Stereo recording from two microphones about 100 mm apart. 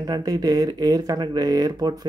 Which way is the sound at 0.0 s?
40° right (ahead or behind).